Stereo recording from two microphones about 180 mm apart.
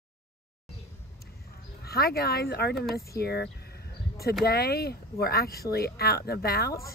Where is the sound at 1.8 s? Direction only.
60° left (ahead or behind).